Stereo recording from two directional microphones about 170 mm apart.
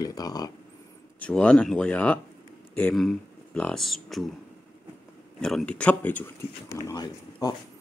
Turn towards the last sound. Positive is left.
turn(degrees=25)  # may be behind; listen again after turning